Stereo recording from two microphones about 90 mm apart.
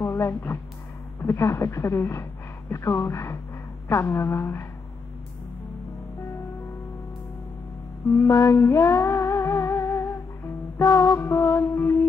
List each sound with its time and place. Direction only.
0.0 s speech: 30° left (ahead or behind)
1.2 s music: 30° left (ahead or behind)
3.9 s speech: 30° left (ahead or behind)
8.2 s music: 30° left (ahead or behind)